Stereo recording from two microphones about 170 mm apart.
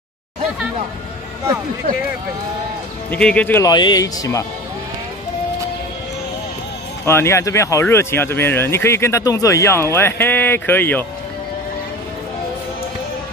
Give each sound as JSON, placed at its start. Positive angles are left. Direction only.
{"t": 3.1, "sound": "speech", "side_deg": 5}
{"t": 3.7, "sound": "speech", "side_deg": 25}
{"t": 7.1, "sound": "speech", "side_deg": 15}